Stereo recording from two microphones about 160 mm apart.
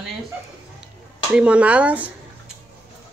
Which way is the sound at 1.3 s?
5° right (ahead or behind).